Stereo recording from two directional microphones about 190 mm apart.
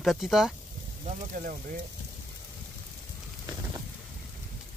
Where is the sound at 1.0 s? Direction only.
45° right (ahead or behind).